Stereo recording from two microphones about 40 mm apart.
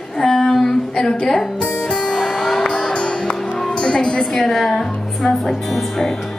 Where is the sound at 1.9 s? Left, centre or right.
Centre.